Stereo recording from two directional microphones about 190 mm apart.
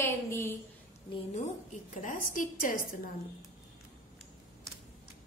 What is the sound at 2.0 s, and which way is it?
Speech, 45° left (ahead or behind).